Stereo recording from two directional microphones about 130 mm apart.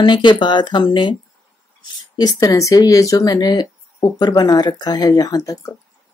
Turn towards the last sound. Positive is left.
turn(degrees=30)  # may be behind; listen again after turning